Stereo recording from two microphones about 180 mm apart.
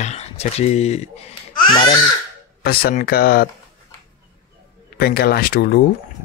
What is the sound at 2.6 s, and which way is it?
Speech, 55° left (ahead or behind).